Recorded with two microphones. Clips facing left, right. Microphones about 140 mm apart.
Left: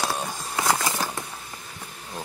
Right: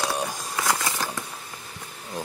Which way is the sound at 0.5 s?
10° left (ahead or behind).